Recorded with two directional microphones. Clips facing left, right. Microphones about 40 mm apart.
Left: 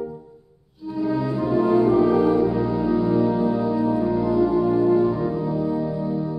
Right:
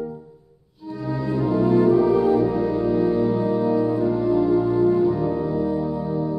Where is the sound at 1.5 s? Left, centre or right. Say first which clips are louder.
Even; centre.